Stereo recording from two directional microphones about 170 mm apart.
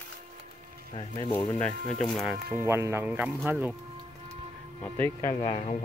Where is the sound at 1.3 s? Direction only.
10° left (ahead or behind).